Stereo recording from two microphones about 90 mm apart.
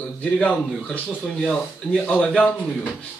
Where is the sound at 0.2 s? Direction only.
15° left (ahead or behind).